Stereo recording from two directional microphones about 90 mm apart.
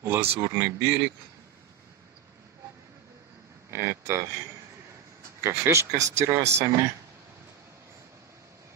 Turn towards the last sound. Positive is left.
turn(degrees=-30)  # may be behind; listen again after turning